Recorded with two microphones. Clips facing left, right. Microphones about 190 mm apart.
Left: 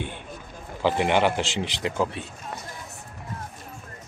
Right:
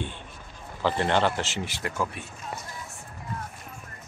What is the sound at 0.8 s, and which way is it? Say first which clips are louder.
A man's voice: left 3 dB; 15° left (ahead or behind).